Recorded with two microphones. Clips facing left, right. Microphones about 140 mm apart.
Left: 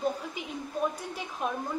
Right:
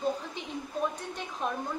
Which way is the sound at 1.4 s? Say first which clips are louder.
Left 1 dB; 5° left (ahead or behind).